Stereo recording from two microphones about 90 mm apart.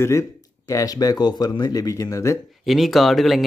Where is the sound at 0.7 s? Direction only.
40° left (ahead or behind).